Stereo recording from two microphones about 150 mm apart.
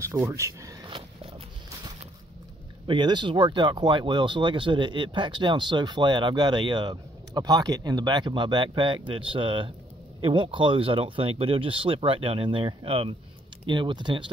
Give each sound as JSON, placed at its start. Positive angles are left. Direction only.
{"t": 0.3, "sound": "speech", "side_deg": -20}
{"t": 0.8, "sound": "a sound", "side_deg": -35}
{"t": 2.9, "sound": "speech", "side_deg": -30}